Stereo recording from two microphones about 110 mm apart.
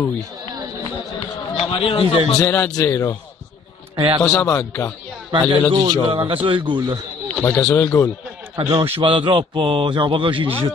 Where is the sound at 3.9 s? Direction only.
50° right (ahead or behind).